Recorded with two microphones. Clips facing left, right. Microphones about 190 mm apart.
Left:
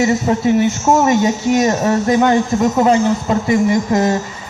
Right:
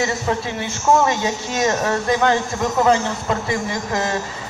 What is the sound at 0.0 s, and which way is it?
A man's voice, 20° left (ahead or behind).